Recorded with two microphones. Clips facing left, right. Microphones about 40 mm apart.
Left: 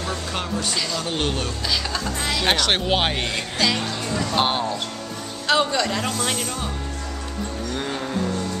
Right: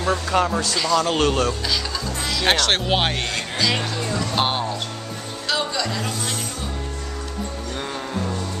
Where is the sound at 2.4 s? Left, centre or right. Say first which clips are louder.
Right 2 dB; centre.